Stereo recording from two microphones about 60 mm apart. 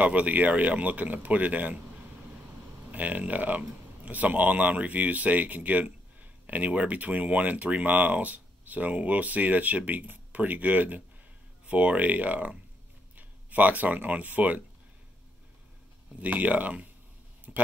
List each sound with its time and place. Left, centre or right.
0.0 s speech: right
2.9 s speech: right
16.2 s speech: right
17.5 s speech: centre